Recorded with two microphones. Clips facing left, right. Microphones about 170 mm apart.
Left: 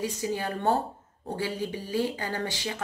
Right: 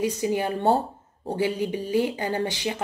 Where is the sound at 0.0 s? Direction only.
20° right (ahead or behind).